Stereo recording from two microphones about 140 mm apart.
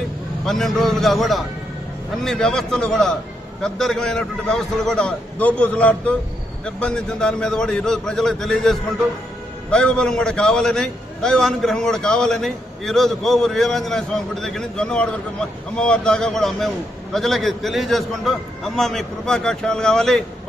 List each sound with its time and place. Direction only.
0.5 s a man's voice: centre (ahead or behind)